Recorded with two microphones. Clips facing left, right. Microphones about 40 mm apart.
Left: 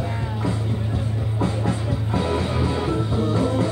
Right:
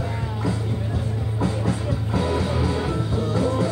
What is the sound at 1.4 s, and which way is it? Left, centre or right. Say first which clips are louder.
Music: even; left.